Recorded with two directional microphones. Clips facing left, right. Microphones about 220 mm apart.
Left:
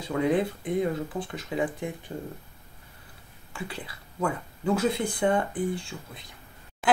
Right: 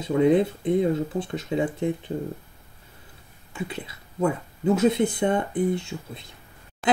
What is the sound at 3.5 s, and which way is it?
Speech, 20° right (ahead or behind).